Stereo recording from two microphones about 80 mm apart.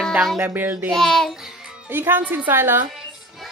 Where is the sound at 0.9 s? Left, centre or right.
Centre.